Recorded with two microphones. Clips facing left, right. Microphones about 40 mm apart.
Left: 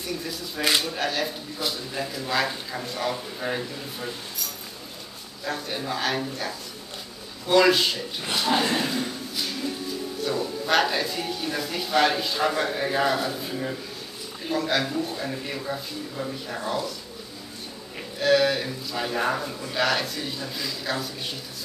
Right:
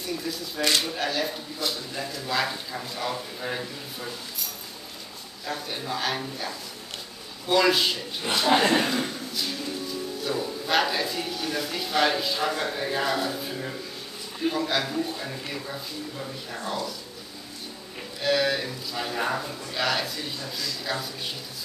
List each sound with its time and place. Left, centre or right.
0.6 s speech: centre
5.4 s speech: centre
8.5 s speech: right
10.2 s speech: centre
18.2 s speech: centre
20.3 s speech: centre
20.8 s speech: centre